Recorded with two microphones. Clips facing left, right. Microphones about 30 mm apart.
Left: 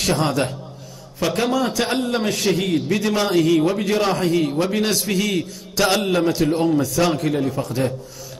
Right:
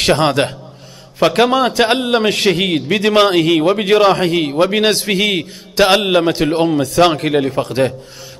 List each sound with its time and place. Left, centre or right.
0.0 s a man's voice: right